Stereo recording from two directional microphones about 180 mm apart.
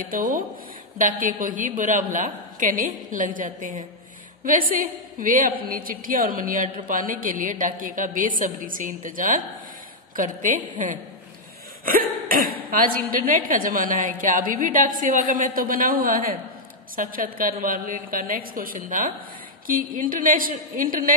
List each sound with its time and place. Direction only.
0.1 s a woman's voice: 50° right (ahead or behind)